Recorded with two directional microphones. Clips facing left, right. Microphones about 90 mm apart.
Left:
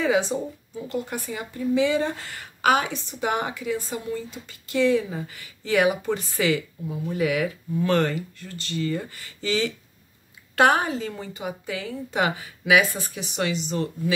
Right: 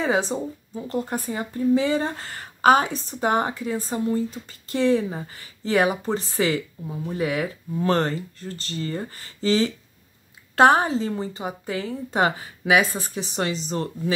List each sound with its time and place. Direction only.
0.0 s speech: 35° right (ahead or behind)